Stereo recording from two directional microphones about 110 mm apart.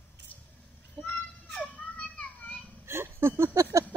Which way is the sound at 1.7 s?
15° left (ahead or behind).